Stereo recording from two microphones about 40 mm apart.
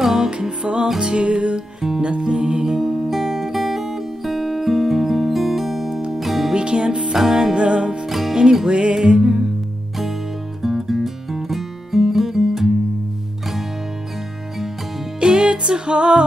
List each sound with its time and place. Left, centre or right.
0.0 s music: centre
1.8 s music: centre
2.0 s music: right; by 6.5 s centre
6.5 s music: right
7.2 s music: centre
7.5 s music: right
8.1 s music: centre
8.4 s music: centre
10.6 s music: centre
15.1 s music: right